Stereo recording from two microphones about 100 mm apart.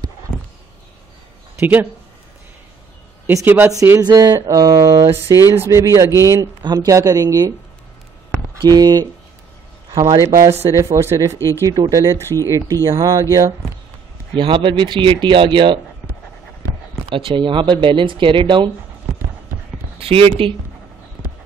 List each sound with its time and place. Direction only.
1.6 s speech: 20° right (ahead or behind)
3.4 s speech: 20° right (ahead or behind)
4.0 s speech: 40° right (ahead or behind)
6.6 s speech: 40° right (ahead or behind)
8.6 s speech: 40° right (ahead or behind)
10.1 s speech: 30° right (ahead or behind)
11.3 s speech: 30° left (ahead or behind)
11.6 s speech: 40° right (ahead or behind)
14.3 s speech: 55° right (ahead or behind)
17.1 s speech: 55° right (ahead or behind)
20.0 s speech: 70° right (ahead or behind)